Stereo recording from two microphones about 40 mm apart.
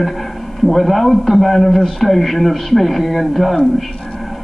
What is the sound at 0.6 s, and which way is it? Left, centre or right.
A man's voice, centre.